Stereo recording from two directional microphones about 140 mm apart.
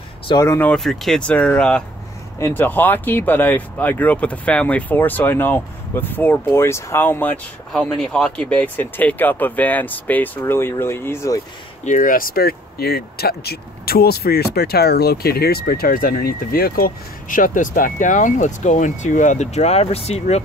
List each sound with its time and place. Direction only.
0.3 s speech: 25° left (ahead or behind)
0.6 s speech: 5° left (ahead or behind); by 11.4 s 20° left (ahead or behind)
11.8 s speech: 70° left (ahead or behind); by 20.4 s 50° left (ahead or behind)